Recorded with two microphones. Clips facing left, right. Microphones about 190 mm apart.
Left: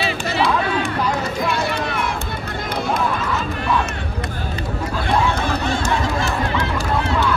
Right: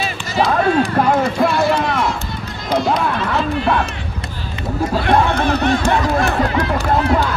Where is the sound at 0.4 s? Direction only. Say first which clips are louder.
Right 6 dB; 45° right (ahead or behind).